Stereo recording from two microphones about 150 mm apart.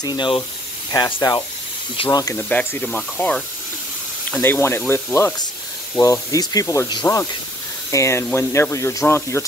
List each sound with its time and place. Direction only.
0.0 s speech: 30° left (ahead or behind)
2.3 s speech: 10° left (ahead or behind)